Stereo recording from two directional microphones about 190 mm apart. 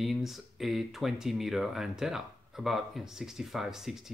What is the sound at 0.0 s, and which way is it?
Speech, centre (ahead or behind).